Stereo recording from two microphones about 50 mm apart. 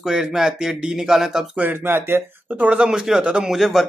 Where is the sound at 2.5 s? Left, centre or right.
Right.